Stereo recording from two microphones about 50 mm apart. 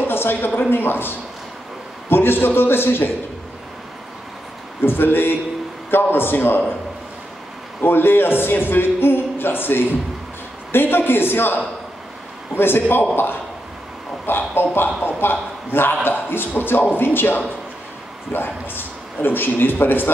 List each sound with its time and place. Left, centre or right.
0.0 s a sound: left
0.7 s a man's voice: left
4.8 s a man's voice: left
7.8 s a man's voice: left